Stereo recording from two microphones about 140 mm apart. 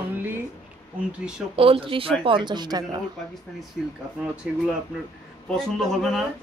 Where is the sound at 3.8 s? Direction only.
5° left (ahead or behind).